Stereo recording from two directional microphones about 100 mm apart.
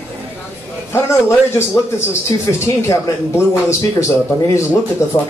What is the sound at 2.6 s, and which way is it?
Speech, 30° left (ahead or behind).